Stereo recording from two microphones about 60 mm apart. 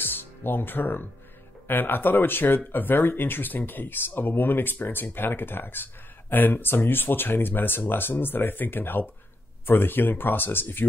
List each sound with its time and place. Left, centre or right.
0.0 s music: left
1.7 s speech: left